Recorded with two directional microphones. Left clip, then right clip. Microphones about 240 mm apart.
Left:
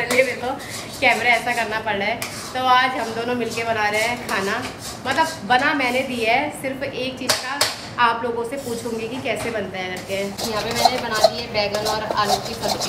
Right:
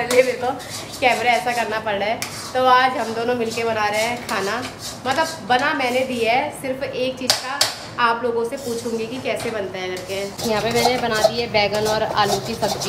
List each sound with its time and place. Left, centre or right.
0.2 s a sound: centre
1.0 s speech: centre
10.5 s a woman's voice: centre